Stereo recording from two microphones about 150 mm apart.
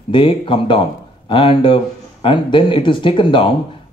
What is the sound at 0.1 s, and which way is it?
A man's voice, 35° left (ahead or behind).